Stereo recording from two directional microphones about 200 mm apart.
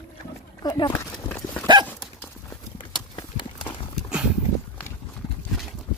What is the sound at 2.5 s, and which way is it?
Clip-clop, 20° left (ahead or behind).